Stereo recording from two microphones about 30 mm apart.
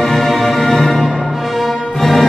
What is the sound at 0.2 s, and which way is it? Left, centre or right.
Music, centre.